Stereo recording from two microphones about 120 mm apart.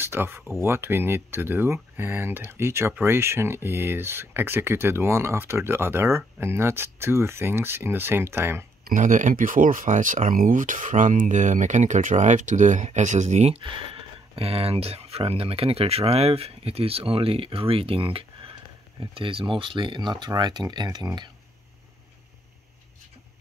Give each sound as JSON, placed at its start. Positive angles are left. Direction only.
{"t": 0.0, "sound": "speech", "side_deg": -20}
{"t": 8.9, "sound": "speech", "side_deg": -90}
{"t": 14.3, "sound": "speech", "side_deg": -55}